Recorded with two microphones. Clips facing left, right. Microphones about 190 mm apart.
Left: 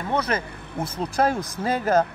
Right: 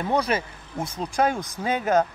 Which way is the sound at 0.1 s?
10° right (ahead or behind).